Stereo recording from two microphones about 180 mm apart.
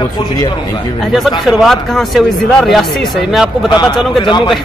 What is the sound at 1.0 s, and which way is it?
Speech, centre (ahead or behind).